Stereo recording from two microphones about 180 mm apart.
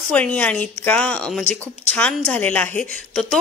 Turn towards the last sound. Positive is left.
turn(degrees=5)  # may be behind; listen again after turning